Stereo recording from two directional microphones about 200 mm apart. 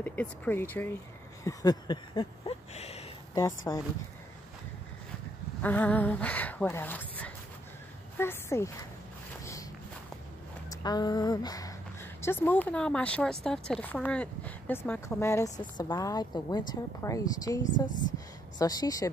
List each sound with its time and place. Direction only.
0.0 s speech: 10° left (ahead or behind)
1.4 s a sound: 15° left (ahead or behind)
3.3 s speech: 15° left (ahead or behind)
5.6 s speech: 10° left (ahead or behind)
9.4 s walk: 15° left (ahead or behind)
10.7 s speech: 20° left (ahead or behind)